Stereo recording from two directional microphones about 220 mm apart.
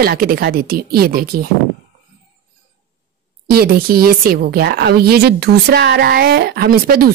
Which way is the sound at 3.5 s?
45° right (ahead or behind).